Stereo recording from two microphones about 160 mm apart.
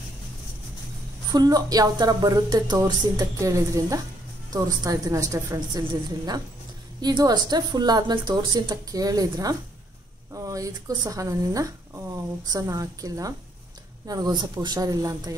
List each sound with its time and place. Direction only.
1.3 s speech: 25° right (ahead or behind)